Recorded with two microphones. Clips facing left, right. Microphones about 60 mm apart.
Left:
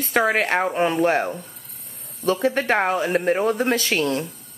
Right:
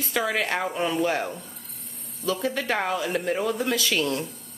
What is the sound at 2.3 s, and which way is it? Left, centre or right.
Speech, left.